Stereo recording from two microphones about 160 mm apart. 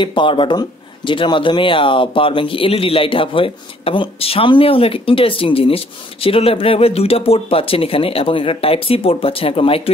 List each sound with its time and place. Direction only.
0.0 s speech: 30° left (ahead or behind)